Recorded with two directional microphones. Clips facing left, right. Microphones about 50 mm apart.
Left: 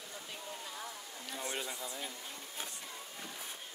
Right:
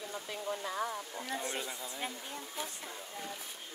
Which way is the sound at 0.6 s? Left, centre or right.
Right.